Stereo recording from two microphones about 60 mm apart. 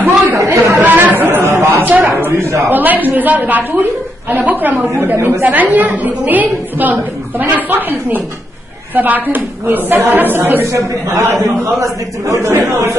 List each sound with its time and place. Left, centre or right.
0.4 s chatter: right
0.7 s chatter: right
2.7 s a woman's voice: right
10.7 s a man's voice: right
12.6 s a man's voice: right